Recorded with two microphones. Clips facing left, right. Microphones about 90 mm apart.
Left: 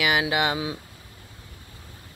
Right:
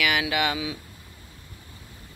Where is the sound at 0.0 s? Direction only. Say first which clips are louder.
Left 2 dB; 25° left (ahead or behind).